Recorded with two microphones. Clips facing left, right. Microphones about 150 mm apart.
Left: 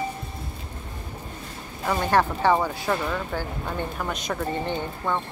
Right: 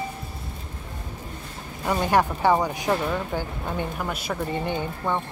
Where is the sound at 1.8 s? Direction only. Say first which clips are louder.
Even; 15° right (ahead or behind).